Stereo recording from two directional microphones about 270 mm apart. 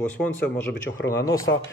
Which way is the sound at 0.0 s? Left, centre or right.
Centre.